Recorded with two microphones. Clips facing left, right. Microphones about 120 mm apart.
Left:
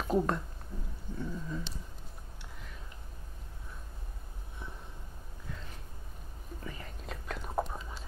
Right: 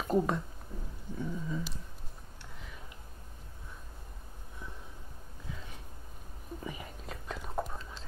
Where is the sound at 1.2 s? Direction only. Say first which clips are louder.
Right 2 dB; 5° right (ahead or behind).